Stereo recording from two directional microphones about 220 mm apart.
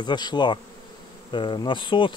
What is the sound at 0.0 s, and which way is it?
Speech, 20° left (ahead or behind).